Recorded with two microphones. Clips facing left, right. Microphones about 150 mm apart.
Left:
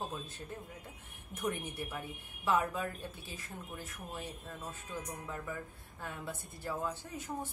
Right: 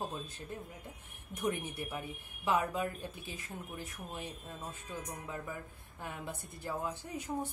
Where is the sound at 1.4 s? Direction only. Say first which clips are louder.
Right 2 dB; 5° right (ahead or behind).